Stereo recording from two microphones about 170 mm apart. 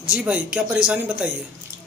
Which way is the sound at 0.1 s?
5° right (ahead or behind).